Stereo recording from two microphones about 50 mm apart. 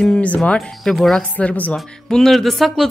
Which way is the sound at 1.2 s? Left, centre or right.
Left.